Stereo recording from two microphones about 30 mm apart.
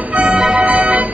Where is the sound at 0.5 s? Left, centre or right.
Right.